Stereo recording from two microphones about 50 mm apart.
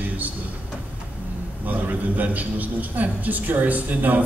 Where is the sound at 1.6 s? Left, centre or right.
Right.